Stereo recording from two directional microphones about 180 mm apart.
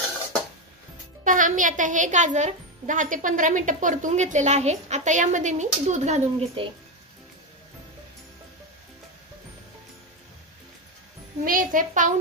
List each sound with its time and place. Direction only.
1.2 s speech: 45° right (ahead or behind)
11.4 s speech: 50° right (ahead or behind)